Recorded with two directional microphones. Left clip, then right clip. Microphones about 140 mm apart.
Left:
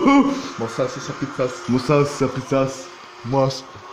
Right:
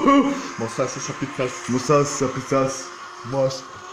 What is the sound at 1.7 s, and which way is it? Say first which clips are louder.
Speech: even; 40° left (ahead or behind).